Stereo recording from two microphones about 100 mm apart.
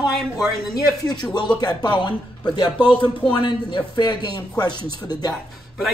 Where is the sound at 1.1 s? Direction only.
45° left (ahead or behind).